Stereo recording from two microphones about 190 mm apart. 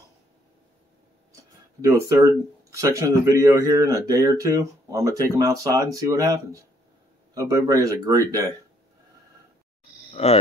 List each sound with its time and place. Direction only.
1.8 s speech: 15° right (ahead or behind)
10.2 s speech: 35° left (ahead or behind)